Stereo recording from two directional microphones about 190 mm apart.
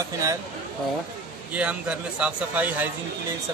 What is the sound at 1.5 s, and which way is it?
A man's voice, 5° right (ahead or behind).